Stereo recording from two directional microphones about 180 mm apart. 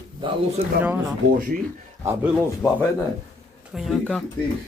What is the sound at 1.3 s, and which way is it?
Speech, 50° right (ahead or behind).